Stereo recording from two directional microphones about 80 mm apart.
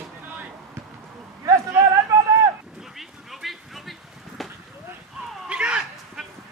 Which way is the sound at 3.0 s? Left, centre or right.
Centre.